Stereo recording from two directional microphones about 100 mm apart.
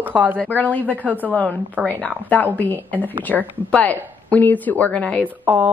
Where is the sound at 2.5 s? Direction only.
20° left (ahead or behind).